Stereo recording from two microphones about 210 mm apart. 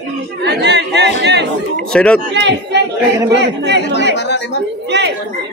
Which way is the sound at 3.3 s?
55° right (ahead or behind).